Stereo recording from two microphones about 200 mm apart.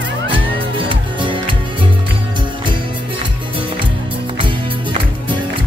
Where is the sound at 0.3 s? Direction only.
25° right (ahead or behind).